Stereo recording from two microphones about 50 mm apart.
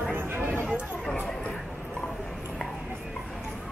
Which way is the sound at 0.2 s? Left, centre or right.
Right.